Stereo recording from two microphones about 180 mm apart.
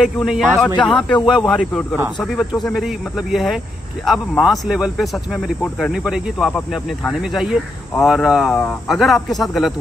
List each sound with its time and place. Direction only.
0.0 s speech: centre (ahead or behind)